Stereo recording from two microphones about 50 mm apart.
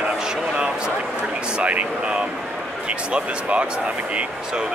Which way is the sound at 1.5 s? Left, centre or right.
Right.